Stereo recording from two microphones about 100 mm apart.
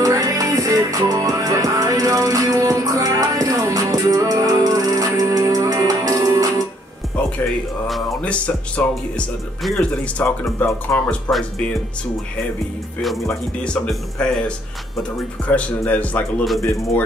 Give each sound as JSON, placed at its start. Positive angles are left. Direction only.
{"t": 0.0, "sound": "music", "side_deg": -35}
{"t": 8.2, "sound": "speech", "side_deg": 10}
{"t": 10.4, "sound": "speech", "side_deg": 30}
{"t": 13.7, "sound": "speech", "side_deg": 10}
{"t": 15.5, "sound": "speech", "side_deg": 15}